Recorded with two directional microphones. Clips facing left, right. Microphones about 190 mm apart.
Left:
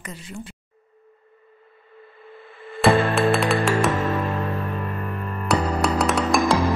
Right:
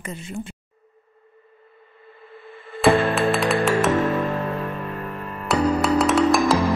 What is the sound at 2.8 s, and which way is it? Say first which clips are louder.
Music: even; centre (ahead or behind).